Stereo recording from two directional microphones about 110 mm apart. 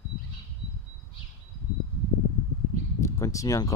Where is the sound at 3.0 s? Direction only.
30° left (ahead or behind).